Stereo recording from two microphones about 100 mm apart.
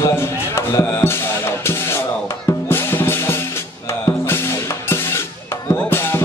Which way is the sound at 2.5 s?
25° left (ahead or behind).